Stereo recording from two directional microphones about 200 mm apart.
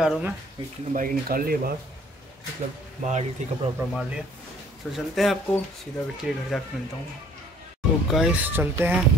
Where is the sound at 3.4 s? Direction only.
35° right (ahead or behind).